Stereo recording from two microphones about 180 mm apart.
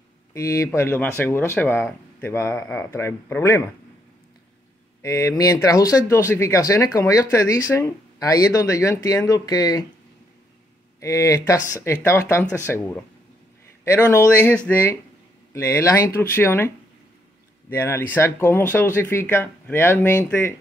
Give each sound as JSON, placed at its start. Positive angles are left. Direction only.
{"t": 0.3, "sound": "speech", "side_deg": 15}
{"t": 5.0, "sound": "speech", "side_deg": 20}
{"t": 11.0, "sound": "speech", "side_deg": 15}